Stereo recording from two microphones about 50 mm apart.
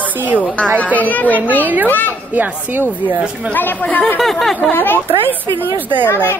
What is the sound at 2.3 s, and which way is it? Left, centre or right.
Speech, right.